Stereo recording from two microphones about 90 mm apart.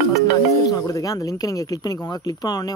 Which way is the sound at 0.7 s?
40° left (ahead or behind).